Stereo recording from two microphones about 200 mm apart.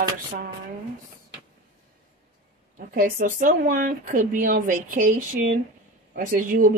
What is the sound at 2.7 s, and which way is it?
Speech, 45° right (ahead or behind).